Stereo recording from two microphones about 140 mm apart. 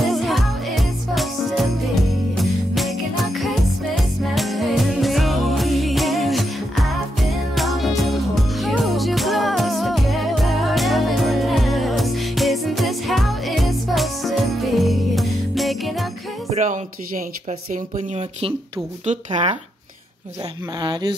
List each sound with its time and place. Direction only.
0.0 s music: centre (ahead or behind)
16.4 s speech: 60° right (ahead or behind)
20.8 s speech: 35° right (ahead or behind)